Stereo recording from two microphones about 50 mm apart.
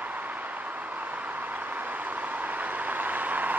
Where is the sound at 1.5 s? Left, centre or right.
Right.